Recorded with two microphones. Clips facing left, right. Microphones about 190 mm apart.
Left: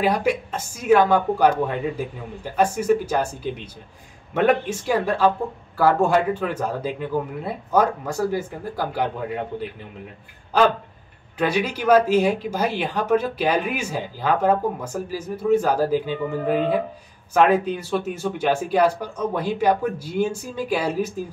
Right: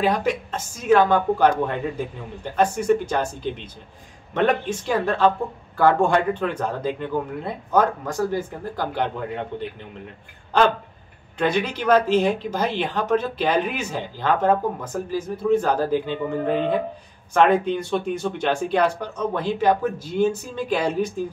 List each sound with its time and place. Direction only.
0.0 s speech: 10° left (ahead or behind)
4.3 s speech: 10° left (ahead or behind)
11.3 s speech: 10° left (ahead or behind)